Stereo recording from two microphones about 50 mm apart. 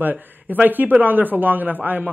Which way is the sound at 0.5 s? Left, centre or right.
Right.